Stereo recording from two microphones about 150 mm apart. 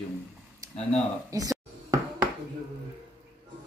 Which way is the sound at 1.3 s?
25° right (ahead or behind).